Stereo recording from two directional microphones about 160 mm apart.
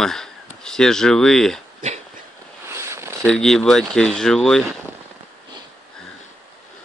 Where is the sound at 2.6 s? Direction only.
15° right (ahead or behind).